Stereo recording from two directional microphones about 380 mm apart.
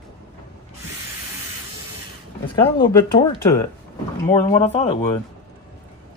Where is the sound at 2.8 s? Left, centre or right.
Centre.